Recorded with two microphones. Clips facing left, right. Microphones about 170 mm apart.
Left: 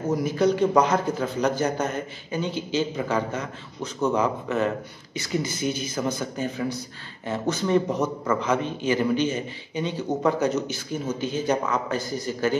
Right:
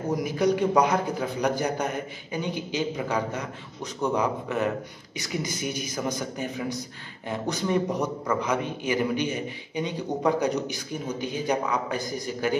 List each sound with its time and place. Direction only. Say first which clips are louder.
0.1 s a man's voice: left 2 dB; 15° right (ahead or behind)